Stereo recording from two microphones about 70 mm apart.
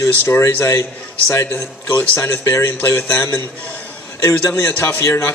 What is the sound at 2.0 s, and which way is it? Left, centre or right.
A man's voice, left.